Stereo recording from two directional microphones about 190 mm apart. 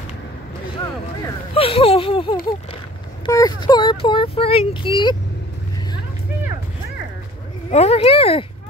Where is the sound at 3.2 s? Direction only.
20° left (ahead or behind).